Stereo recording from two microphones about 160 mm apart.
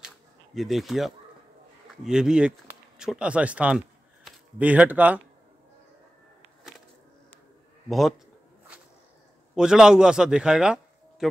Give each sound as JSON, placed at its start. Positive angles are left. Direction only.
{"t": 0.6, "sound": "speech", "side_deg": 0}
{"t": 9.6, "sound": "speech", "side_deg": -5}